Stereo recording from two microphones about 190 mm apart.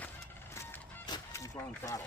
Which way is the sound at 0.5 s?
20° left (ahead or behind).